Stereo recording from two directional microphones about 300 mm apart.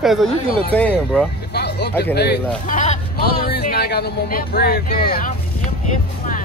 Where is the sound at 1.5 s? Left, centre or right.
Left.